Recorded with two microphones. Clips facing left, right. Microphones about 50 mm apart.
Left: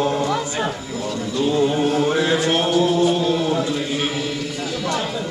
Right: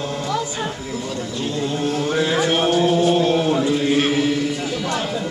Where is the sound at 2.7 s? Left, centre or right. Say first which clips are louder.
Right 1 dB; centre.